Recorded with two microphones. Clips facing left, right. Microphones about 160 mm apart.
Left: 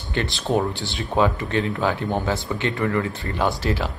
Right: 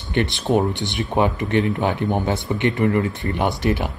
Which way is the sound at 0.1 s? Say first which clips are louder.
Right 3 dB; 20° right (ahead or behind).